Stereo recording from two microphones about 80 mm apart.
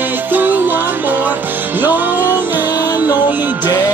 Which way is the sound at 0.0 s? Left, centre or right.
Right.